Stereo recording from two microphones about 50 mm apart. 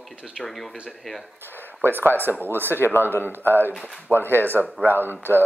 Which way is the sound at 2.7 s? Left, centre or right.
Left.